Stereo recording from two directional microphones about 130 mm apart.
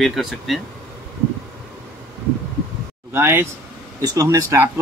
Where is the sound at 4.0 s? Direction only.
30° right (ahead or behind).